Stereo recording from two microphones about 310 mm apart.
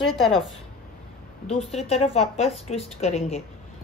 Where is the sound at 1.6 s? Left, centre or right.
Centre.